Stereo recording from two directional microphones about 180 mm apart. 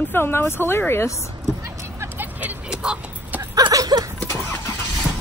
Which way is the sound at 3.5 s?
20° right (ahead or behind).